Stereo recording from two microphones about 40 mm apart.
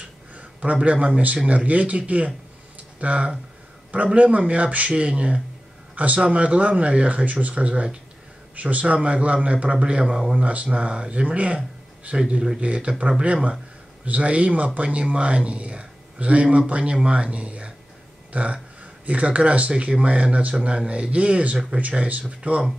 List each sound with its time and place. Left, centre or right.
0.3 s a sound: right
1.0 s speech: right
10.3 s speech: right